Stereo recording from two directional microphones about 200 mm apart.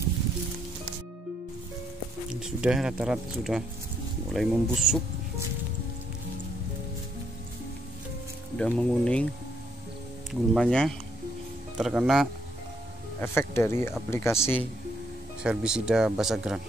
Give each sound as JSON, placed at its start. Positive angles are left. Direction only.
{"t": 2.2, "sound": "speech", "side_deg": -5}
{"t": 8.5, "sound": "speech", "side_deg": 5}
{"t": 10.5, "sound": "speech", "side_deg": 5}
{"t": 13.2, "sound": "speech", "side_deg": 10}
{"t": 15.4, "sound": "speech", "side_deg": -5}